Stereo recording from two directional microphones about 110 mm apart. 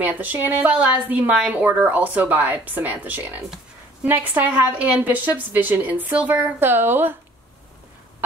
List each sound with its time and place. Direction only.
0.0 s a woman's voice: 15° right (ahead or behind)